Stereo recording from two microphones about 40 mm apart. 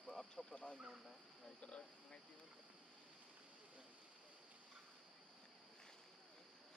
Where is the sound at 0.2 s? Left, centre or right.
Centre.